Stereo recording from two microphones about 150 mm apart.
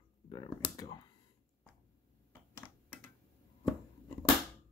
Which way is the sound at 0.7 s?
25° left (ahead or behind).